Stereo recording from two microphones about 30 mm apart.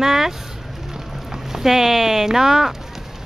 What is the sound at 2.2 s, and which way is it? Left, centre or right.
Speech, centre.